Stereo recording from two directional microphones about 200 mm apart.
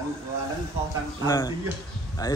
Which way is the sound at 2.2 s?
20° left (ahead or behind).